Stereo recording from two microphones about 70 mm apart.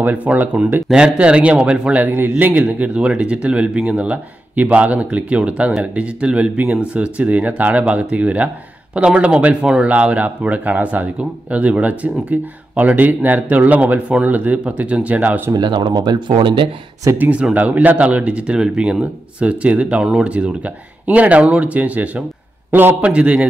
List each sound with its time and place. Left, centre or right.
0.0 s speech: right
0.8 s speech: centre
9.8 s speech: centre
15.5 s speech: right
17.2 s a man's voice: centre
22.9 s speech: centre